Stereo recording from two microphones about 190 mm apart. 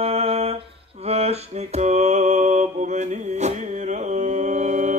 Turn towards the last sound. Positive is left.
turn(degrees=-40)  # may be behind; listen again after turning